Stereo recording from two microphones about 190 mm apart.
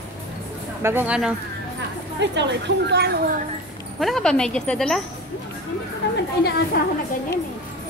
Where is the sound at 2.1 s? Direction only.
65° right (ahead or behind).